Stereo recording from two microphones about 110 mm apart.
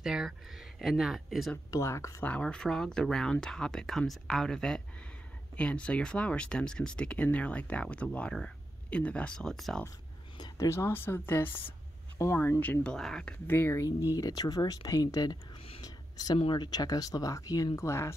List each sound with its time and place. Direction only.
0.0 s speech: 5° right (ahead or behind)
1.7 s speech: 25° left (ahead or behind)
2.2 s speech: 10° left (ahead or behind)
10.3 s speech: 35° left (ahead or behind)
14.1 s speech: 35° left (ahead or behind)
15.5 s a sound: 60° left (ahead or behind)
15.8 s a sound: 35° left (ahead or behind)
16.5 s speech: 40° left (ahead or behind)